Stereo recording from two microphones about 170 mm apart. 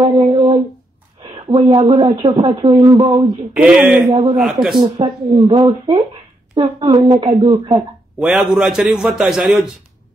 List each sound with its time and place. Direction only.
0.2 s a sound: 30° right (ahead or behind)
1.5 s a woman's voice: 25° right (ahead or behind)
3.5 s a man's voice: 5° right (ahead or behind)
4.1 s a woman's voice: 30° right (ahead or behind)
4.4 s a man's voice: centre (ahead or behind)
4.8 s a woman's voice: 30° right (ahead or behind)
8.2 s a man's voice: 5° right (ahead or behind)